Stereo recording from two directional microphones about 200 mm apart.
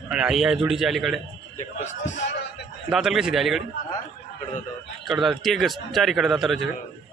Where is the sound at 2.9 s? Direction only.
Centre (ahead or behind).